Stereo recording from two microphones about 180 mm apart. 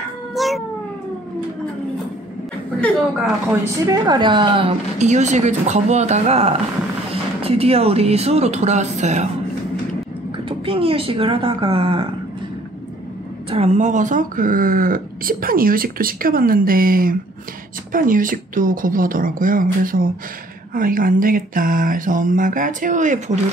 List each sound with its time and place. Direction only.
0.3 s cat: centre (ahead or behind)
3.8 s a woman's voice: 20° right (ahead or behind); by 9.3 s 40° right (ahead or behind)
10.3 s speech: 30° right (ahead or behind)
13.5 s speech: 35° right (ahead or behind)